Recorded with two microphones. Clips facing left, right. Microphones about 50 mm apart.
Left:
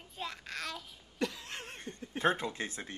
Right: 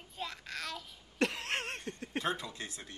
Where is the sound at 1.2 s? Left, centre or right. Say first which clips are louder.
Right 4 dB; right.